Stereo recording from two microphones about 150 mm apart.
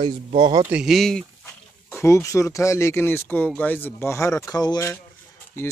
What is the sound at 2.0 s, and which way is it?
Speech, 20° left (ahead or behind).